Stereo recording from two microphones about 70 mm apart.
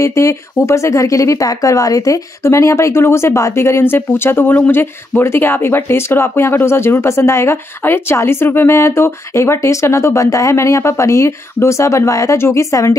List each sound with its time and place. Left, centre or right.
0.0 s speech: left
2.4 s speech: left
12.4 s speech: left